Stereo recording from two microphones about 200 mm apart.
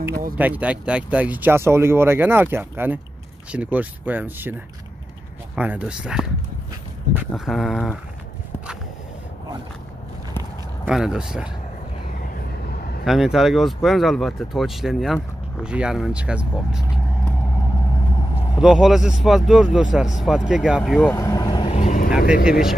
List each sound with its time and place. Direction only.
0.4 s speech: 5° right (ahead or behind)
5.6 s speech: 5° right (ahead or behind)
7.2 s speech: centre (ahead or behind)
10.9 s speech: 5° right (ahead or behind)
13.0 s speech: centre (ahead or behind)
18.6 s speech: 5° right (ahead or behind)
21.0 s speech: 10° left (ahead or behind)
21.6 s vehicle: 35° left (ahead or behind)
22.3 s speech: 5° right (ahead or behind)